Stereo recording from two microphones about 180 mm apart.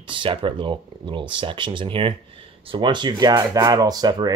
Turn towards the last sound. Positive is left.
turn(degrees=-25)  # may be behind; listen again after turning